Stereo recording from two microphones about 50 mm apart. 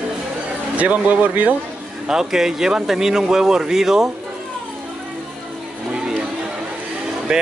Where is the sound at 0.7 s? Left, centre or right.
Right.